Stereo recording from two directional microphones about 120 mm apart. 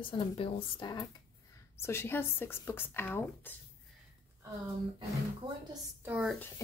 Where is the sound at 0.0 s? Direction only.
45° left (ahead or behind).